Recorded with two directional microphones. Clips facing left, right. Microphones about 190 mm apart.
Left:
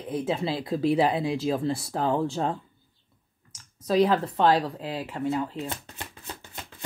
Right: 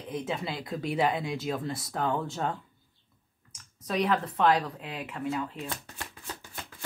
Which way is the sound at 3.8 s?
30° left (ahead or behind).